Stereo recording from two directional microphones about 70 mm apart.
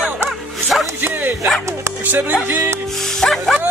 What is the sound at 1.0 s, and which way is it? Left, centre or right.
Speech, right.